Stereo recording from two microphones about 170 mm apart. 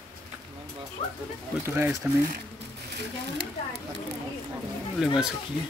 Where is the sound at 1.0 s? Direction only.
35° left (ahead or behind).